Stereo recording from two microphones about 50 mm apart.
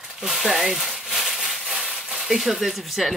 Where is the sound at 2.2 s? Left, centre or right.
Centre.